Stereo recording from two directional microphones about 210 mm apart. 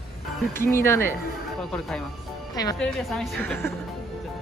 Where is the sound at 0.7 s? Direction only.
10° left (ahead or behind).